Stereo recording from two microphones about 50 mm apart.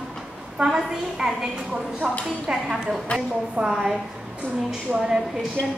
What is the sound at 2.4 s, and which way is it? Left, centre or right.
A woman's voice, centre.